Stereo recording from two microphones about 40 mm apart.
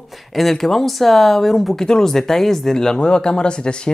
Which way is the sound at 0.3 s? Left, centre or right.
Centre.